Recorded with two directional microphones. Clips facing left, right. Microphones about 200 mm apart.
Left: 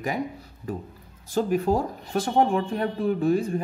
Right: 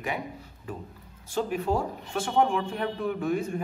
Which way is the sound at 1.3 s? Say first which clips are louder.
Left 4 dB; 40° left (ahead or behind).